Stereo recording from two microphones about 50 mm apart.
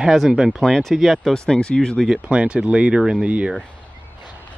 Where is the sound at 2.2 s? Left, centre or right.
Right.